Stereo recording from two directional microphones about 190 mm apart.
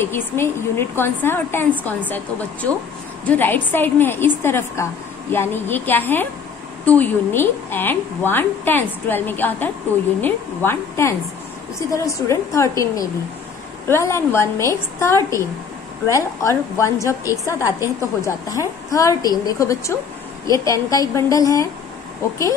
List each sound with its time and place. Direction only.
0.0 s a woman's voice: 10° left (ahead or behind)